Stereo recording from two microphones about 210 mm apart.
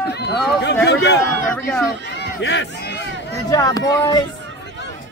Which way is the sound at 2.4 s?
55° left (ahead or behind).